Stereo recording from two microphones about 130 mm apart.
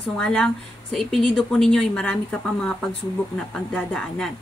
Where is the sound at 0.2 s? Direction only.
5° left (ahead or behind).